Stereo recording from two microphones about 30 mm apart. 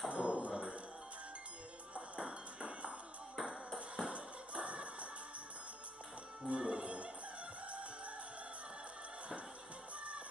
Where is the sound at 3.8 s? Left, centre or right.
Right.